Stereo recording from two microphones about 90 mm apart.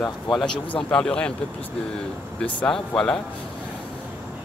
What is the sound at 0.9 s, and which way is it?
Speech, 10° left (ahead or behind).